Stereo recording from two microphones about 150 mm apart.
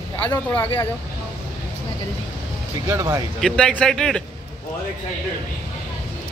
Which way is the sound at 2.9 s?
20° right (ahead or behind).